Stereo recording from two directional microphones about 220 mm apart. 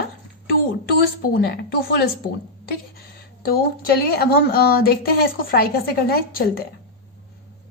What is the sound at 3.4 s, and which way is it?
Speech, 45° left (ahead or behind).